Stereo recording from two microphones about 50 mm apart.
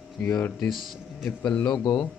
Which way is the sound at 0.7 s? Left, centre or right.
Centre.